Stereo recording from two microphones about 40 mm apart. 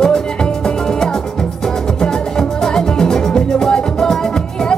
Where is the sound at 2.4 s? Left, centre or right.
Centre.